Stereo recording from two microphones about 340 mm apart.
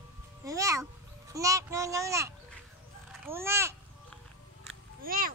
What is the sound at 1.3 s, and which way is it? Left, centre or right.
A child's voice, centre.